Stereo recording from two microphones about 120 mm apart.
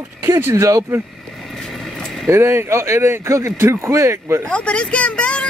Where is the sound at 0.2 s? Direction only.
20° right (ahead or behind).